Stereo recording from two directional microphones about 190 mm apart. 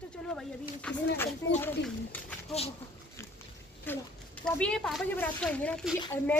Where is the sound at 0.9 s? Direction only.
5° left (ahead or behind).